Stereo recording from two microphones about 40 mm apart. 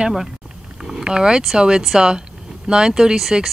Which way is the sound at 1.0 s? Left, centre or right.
Centre.